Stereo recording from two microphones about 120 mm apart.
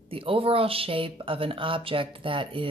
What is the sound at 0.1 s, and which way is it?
Speech, 50° right (ahead or behind).